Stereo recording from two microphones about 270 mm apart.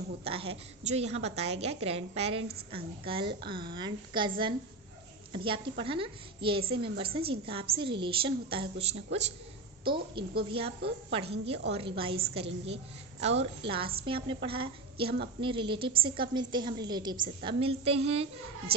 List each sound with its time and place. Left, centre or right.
0.2 s a woman's voice: right
12.6 s a woman's voice: right